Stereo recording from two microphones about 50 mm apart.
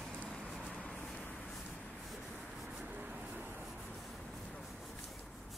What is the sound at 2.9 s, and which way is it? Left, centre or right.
Vehicle, right.